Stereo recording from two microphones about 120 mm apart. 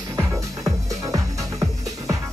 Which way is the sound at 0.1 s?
25° right (ahead or behind).